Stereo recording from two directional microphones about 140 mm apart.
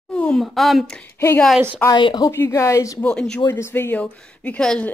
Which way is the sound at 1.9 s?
30° left (ahead or behind).